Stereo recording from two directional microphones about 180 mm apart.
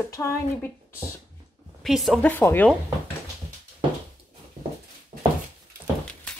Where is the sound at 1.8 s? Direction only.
Centre (ahead or behind).